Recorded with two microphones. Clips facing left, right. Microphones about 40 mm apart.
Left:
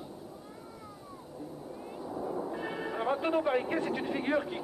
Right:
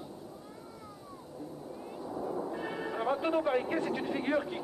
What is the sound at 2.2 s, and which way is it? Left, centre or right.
Speech, centre.